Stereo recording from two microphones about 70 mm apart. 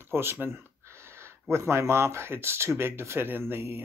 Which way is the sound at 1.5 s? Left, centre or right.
Right.